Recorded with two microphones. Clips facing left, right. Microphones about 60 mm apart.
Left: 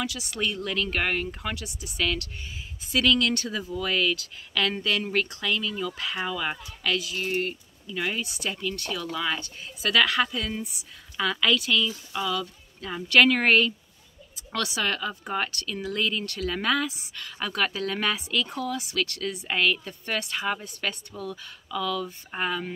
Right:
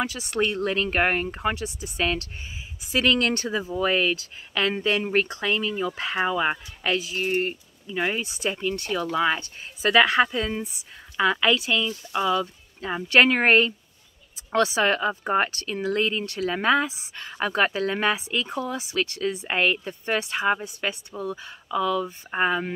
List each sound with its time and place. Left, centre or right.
0.0 s a woman's voice: right